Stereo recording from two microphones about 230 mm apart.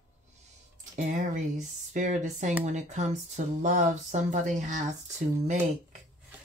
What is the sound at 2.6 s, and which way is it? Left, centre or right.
Speech, right.